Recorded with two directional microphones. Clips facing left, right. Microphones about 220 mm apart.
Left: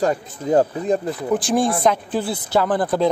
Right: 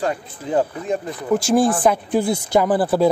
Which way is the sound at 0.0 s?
40° left (ahead or behind).